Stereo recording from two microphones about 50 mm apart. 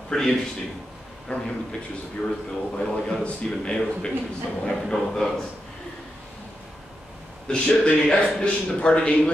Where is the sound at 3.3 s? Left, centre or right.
Centre.